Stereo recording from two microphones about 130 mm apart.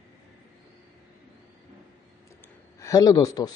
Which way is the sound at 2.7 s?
25° left (ahead or behind).